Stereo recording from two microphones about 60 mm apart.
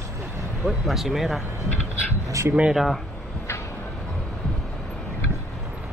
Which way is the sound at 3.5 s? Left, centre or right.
Left.